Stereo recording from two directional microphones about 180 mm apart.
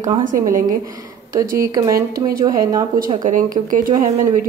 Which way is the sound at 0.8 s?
20° right (ahead or behind).